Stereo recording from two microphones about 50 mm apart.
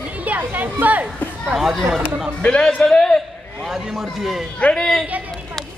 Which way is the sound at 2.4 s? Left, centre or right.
Centre.